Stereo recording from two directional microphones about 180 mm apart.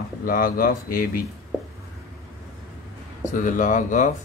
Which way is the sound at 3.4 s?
45° left (ahead or behind).